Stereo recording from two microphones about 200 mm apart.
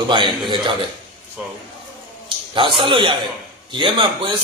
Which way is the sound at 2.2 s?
25° right (ahead or behind).